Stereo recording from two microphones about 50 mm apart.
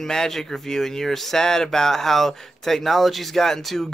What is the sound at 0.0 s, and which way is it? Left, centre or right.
Speech, centre.